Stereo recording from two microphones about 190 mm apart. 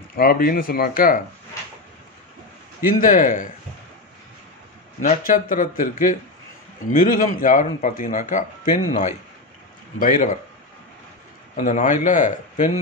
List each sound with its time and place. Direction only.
0.1 s a man's voice: 50° left (ahead or behind)
2.9 s a man's voice: 45° left (ahead or behind)
5.0 s a man's voice: 45° left (ahead or behind)
11.5 s a man's voice: 40° left (ahead or behind)